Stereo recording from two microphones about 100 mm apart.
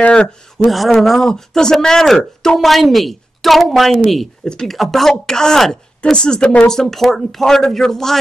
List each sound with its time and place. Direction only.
0.0 s speech: 10° left (ahead or behind)